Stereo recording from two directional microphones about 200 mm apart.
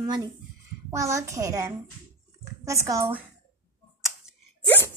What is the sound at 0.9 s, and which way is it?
A woman's voice, 15° right (ahead or behind).